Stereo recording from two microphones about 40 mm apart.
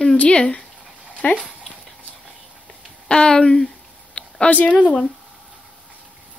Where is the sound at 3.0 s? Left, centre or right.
Left.